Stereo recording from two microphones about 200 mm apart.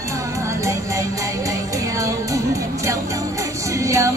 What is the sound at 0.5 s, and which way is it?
Music, 15° right (ahead or behind).